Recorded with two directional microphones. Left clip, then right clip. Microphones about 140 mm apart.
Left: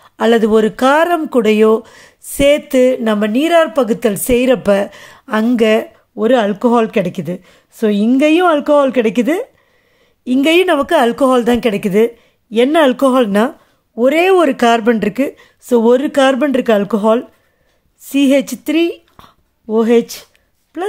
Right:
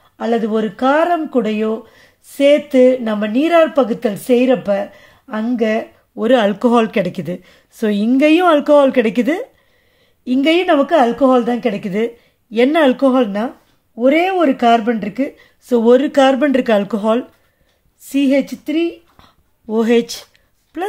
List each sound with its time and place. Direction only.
0.0 s speech: 50° left (ahead or behind)
6.1 s a woman's voice: 15° left (ahead or behind)
10.5 s speech: 50° left (ahead or behind)
11.9 s speech: 35° left (ahead or behind)
13.0 s a woman's voice: 55° left (ahead or behind); by 18.4 s 40° left (ahead or behind)
18.4 s speech: 55° left (ahead or behind)
19.2 s a sound: 35° left (ahead or behind)
19.6 s a woman's voice: 20° left (ahead or behind)